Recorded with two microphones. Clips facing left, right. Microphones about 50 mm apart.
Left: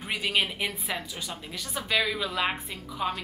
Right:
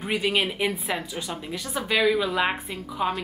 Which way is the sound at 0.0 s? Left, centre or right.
Centre.